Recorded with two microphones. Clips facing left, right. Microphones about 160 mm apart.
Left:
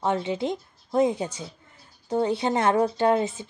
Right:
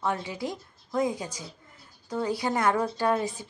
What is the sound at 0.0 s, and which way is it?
A woman's voice, 25° left (ahead or behind).